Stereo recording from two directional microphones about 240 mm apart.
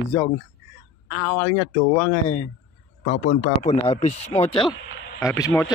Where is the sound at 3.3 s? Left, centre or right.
Left.